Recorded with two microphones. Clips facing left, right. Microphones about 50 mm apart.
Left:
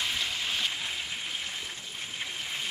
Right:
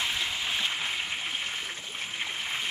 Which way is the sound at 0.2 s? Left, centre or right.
Right.